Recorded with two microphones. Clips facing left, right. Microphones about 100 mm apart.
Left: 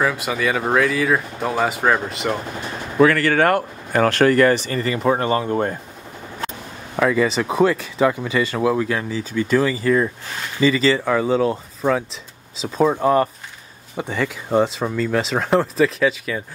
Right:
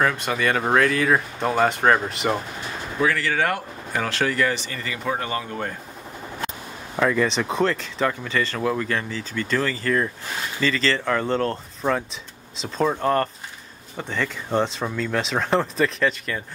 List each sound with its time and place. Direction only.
0.0 s speech: 5° left (ahead or behind)
3.0 s speech: 60° left (ahead or behind); by 5.8 s 35° left (ahead or behind)
7.0 s speech: 5° left (ahead or behind)